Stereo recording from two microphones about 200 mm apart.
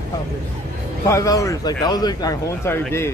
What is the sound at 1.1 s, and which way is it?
A man's voice, 15° left (ahead or behind).